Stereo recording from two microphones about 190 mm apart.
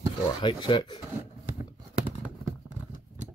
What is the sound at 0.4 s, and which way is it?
Speech, 25° left (ahead or behind).